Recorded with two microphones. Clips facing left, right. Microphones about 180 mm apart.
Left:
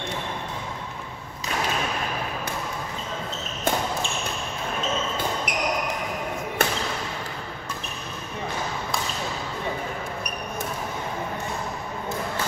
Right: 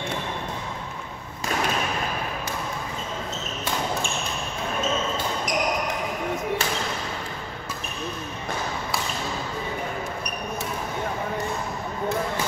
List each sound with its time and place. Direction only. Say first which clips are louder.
5.5 s basketball bounce: right 1 dB; 65° left (ahead or behind)